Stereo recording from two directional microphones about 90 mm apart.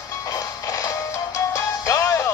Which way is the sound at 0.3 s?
40° left (ahead or behind).